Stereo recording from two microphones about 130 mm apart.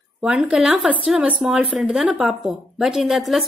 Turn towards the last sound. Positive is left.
turn(degrees=0)  # may be behind; listen again after turning